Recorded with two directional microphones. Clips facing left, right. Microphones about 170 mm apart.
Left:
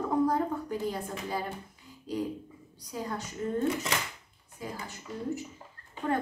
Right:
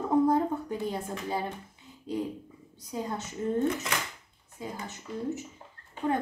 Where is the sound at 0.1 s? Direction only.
20° right (ahead or behind).